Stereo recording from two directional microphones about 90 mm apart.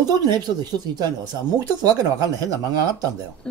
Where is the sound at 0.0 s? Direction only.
45° right (ahead or behind).